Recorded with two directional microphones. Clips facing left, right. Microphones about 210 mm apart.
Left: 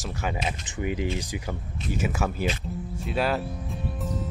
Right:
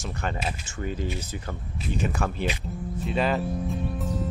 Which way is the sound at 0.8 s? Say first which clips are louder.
Left 3 dB; 15° left (ahead or behind).